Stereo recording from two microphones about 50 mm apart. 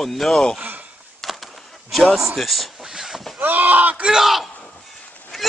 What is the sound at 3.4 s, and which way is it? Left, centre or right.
Speech, right.